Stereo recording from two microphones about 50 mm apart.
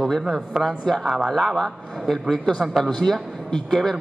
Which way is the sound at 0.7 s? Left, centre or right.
Centre.